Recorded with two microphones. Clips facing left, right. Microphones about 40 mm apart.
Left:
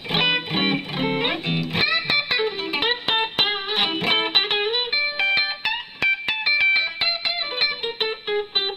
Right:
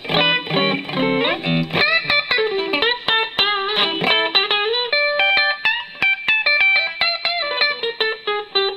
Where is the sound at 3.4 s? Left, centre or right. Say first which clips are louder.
Right 6 dB; right.